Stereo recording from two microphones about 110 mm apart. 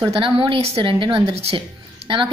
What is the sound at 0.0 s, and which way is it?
A woman's voice, 50° right (ahead or behind).